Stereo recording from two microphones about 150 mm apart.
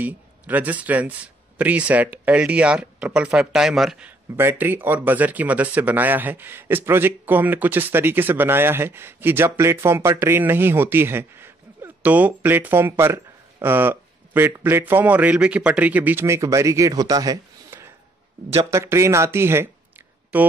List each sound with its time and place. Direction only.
0.0 s speech: 10° right (ahead or behind)
4.4 s speech: 15° right (ahead or behind)